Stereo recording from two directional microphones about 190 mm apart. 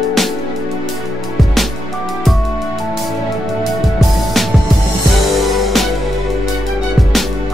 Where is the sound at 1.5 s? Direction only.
Centre (ahead or behind).